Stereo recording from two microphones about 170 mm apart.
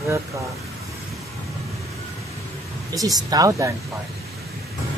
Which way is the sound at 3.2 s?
20° right (ahead or behind).